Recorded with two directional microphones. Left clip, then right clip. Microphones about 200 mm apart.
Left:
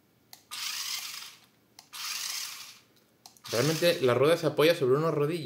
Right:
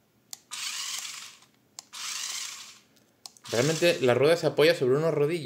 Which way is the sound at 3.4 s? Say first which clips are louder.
Right 2 dB; 10° right (ahead or behind).